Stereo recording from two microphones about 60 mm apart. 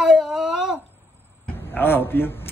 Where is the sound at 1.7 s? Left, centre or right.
Left.